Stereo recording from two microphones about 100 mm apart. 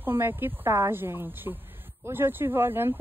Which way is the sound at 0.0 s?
25° right (ahead or behind).